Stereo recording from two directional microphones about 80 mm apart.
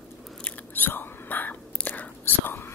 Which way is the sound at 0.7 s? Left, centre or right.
Left.